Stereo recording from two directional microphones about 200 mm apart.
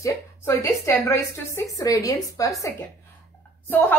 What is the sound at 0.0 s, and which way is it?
A woman's voice, 15° left (ahead or behind).